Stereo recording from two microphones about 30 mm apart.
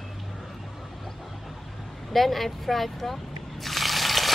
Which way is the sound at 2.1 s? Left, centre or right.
Centre.